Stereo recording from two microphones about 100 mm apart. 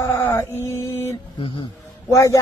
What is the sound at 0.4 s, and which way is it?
Chant, 30° left (ahead or behind).